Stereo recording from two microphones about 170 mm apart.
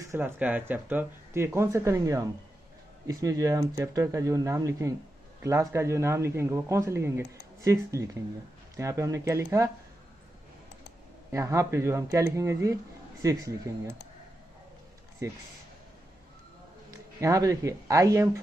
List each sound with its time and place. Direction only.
0.0 s speech: 15° right (ahead or behind)
11.3 s speech: 20° right (ahead or behind)
15.2 s speech: 20° right (ahead or behind)
16.9 s speech: 20° right (ahead or behind)